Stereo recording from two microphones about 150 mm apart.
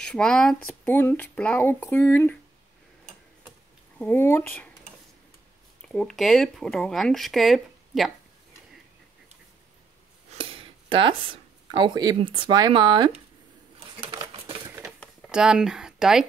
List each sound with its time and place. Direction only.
0.0 s speech: 5° left (ahead or behind)
4.0 s speech: 15° left (ahead or behind)
5.8 s speech: 5° left (ahead or behind)
10.3 s speech: 35° right (ahead or behind)
13.7 s a sound: 40° right (ahead or behind)
14.7 s a sound: 10° right (ahead or behind)